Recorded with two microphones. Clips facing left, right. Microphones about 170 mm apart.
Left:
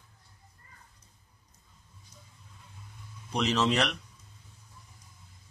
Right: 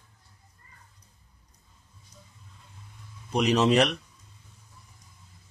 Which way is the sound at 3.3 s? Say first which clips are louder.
Right 5 dB; 15° right (ahead or behind).